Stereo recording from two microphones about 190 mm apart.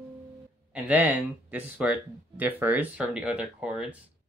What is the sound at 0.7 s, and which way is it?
Speech, 10° right (ahead or behind).